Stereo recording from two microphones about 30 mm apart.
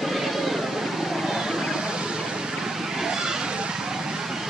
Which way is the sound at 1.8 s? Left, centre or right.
Right.